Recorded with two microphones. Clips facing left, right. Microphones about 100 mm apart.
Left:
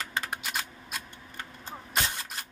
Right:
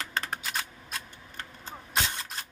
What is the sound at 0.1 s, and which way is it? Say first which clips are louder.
Typing: right 1 dB; 5° left (ahead or behind).